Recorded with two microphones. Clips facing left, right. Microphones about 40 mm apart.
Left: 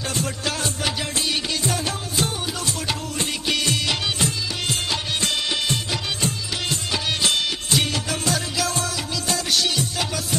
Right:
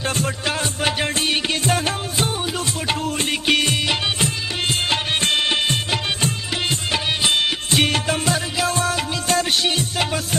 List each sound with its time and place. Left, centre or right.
0.1 s music: right
4.8 s music: right